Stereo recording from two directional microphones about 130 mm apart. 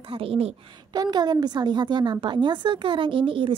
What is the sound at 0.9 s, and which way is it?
A woman's voice, 30° right (ahead or behind).